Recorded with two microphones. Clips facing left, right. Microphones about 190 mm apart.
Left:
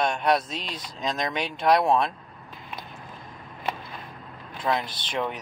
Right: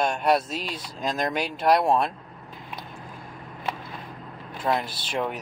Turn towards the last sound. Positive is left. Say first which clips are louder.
# right 1 dB
turn(degrees=-5)  # may be behind; listen again after turning